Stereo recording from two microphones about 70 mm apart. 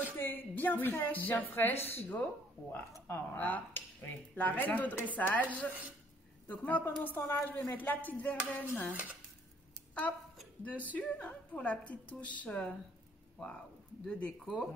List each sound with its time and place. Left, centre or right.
0.2 s a woman's voice: left
1.5 s a woman's voice: left
10.6 s a woman's voice: left
14.0 s speech: centre
14.4 s speech: centre